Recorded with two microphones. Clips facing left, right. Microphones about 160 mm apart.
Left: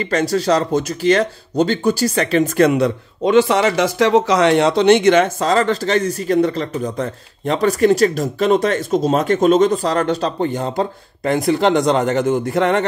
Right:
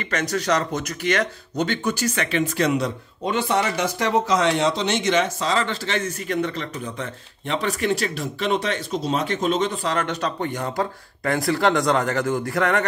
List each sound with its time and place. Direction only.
0.0 s speech: 30° left (ahead or behind)